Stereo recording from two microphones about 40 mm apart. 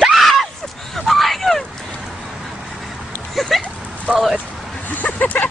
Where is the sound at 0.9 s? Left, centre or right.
Centre.